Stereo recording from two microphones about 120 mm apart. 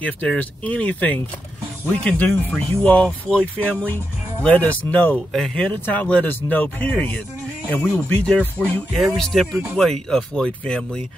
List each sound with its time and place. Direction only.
0.0 s speech: 10° left (ahead or behind)